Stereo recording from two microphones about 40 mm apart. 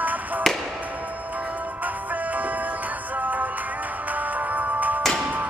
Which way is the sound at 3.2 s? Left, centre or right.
Right.